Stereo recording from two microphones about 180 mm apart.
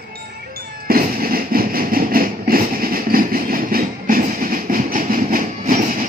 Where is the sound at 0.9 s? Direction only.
55° right (ahead or behind).